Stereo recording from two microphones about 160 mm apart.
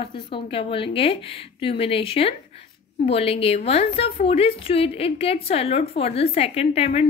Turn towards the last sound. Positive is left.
turn(degrees=40)  # may be behind; listen again after turning